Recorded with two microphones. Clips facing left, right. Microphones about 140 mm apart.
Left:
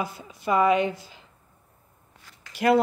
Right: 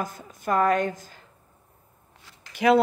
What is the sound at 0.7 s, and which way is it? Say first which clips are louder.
Speech: left 1 dB; 45° right (ahead or behind).